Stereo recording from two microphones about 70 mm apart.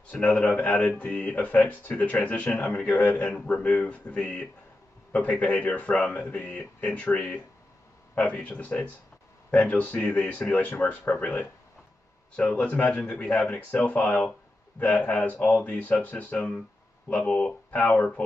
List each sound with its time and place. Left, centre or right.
0.1 s speech: centre
17.6 s speech: left